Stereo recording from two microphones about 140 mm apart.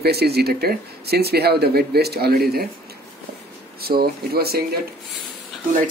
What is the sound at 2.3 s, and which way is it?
Speech, 90° right.